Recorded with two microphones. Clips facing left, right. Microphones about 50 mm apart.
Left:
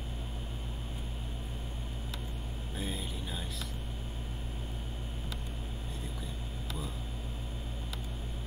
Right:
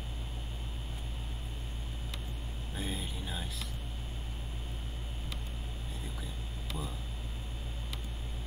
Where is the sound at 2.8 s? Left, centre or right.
Centre.